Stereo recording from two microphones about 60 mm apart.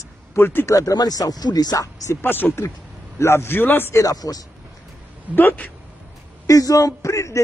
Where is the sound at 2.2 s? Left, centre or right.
Left.